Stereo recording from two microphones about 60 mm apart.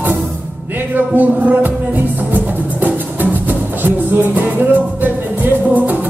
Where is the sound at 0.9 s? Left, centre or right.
Right.